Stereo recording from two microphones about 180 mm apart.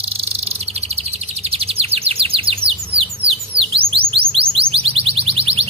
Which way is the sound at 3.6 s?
30° right (ahead or behind).